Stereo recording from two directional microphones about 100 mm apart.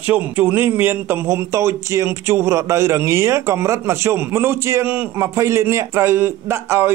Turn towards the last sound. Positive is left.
turn(degrees=-25)  # may be behind; listen again after turning